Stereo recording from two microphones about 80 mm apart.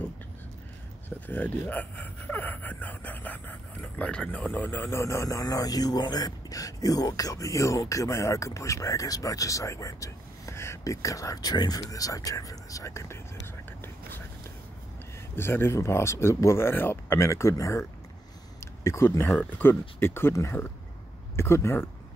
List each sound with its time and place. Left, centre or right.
1.2 s speech: centre; by 11.8 s left
11.9 s speech: left
15.3 s speech: left
18.9 s speech: left